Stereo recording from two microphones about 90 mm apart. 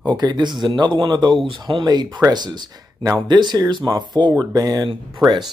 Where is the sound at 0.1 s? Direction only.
50° right (ahead or behind).